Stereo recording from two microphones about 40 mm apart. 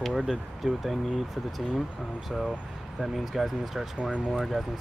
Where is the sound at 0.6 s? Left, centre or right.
Centre.